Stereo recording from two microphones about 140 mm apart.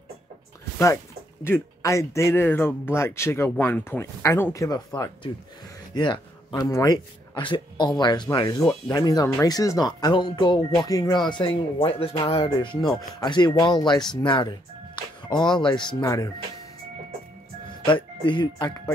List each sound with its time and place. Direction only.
1.4 s speech: 20° left (ahead or behind)
18.2 s speech: 35° left (ahead or behind)